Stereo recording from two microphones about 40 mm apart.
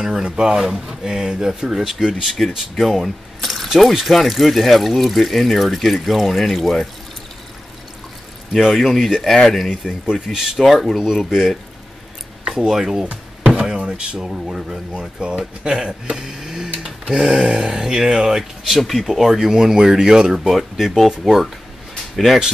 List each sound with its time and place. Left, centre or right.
0.0 s speech: centre
0.6 s speech: centre
2.2 s speech: centre
8.7 s speech: centre
9.7 s speech: centre
12.6 s speech: centre
13.0 s a sound: right
13.9 s speech: right
16.2 s printer: centre
17.2 s speech: centre